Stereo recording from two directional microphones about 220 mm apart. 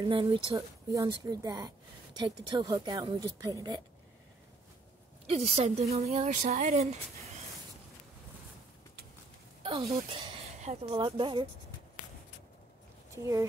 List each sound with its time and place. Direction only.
0.0 s speech: 20° right (ahead or behind)
5.2 s speech: 30° right (ahead or behind)
9.6 s speech: 25° right (ahead or behind)
13.1 s speech: 15° right (ahead or behind)